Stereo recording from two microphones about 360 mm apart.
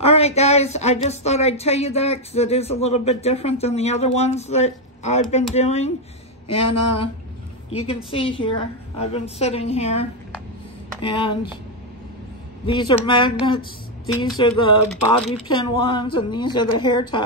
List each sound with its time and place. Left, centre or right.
0.0 s speech: centre
6.4 s a sound: left
7.7 s speech: centre
12.6 s speech: centre
14.9 s speech: centre
15.3 s speech: centre